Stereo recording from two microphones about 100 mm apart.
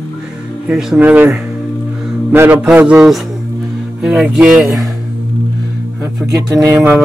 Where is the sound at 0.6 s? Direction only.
10° right (ahead or behind).